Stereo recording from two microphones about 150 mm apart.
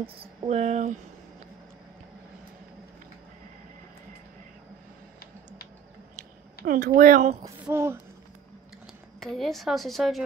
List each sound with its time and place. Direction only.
0.0 s a sound: 40° right (ahead or behind)
6.6 s speech: 80° right
7.7 s speech: 15° right (ahead or behind)
9.2 s speech: centre (ahead or behind)